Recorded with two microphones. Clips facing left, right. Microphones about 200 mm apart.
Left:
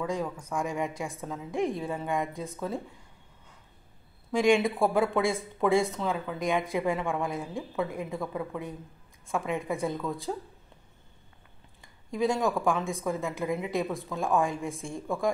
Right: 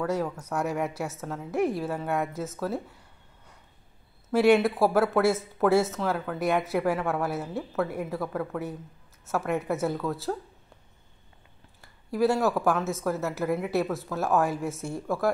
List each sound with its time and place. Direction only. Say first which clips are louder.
0.0 s a woman's voice: right 3 dB; 5° right (ahead or behind)
4.3 s speech: right 3 dB; 5° right (ahead or behind)
12.1 s speech: right 3 dB; 5° right (ahead or behind)